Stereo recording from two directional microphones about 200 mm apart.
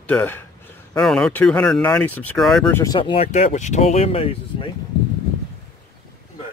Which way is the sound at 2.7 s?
20° left (ahead or behind).